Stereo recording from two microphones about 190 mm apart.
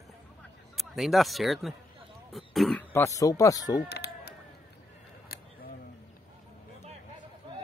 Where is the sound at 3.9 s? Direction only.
60° left (ahead or behind).